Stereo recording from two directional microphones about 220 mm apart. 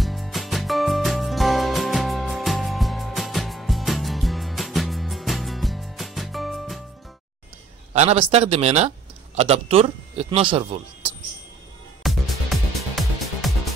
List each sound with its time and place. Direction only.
0.0 s music: centre (ahead or behind)
7.9 s speech: 30° right (ahead or behind)
12.0 s music: centre (ahead or behind)